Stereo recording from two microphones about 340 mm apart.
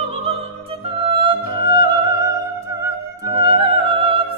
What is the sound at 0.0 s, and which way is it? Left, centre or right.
Music, centre.